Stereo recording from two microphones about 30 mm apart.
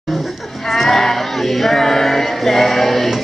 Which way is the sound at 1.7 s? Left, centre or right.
Centre.